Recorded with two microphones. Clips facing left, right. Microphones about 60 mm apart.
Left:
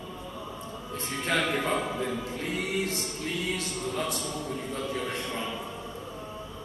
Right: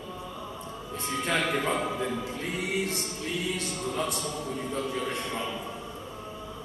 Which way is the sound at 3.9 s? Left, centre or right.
Right.